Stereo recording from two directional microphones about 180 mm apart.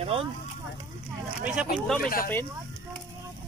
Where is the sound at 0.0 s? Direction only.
30° right (ahead or behind).